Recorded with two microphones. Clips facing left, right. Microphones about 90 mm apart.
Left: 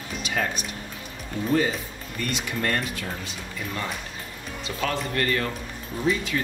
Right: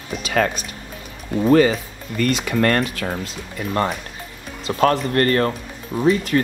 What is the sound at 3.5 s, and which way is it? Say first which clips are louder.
A man's voice: right 10 dB; 50° right (ahead or behind).